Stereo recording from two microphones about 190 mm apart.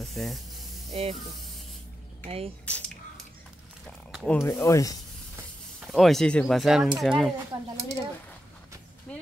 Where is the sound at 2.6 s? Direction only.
5° left (ahead or behind).